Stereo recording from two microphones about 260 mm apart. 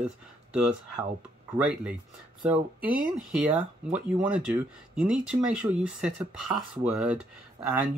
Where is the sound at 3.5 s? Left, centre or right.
Centre.